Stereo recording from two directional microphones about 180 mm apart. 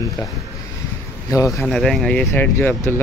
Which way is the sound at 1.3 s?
15° left (ahead or behind).